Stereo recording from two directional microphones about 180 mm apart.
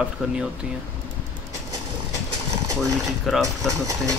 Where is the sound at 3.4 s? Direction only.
20° right (ahead or behind).